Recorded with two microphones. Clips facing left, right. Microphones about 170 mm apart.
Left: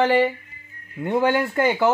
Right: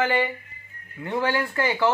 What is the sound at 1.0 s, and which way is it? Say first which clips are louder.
Speech: left 5 dB; 20° left (ahead or behind).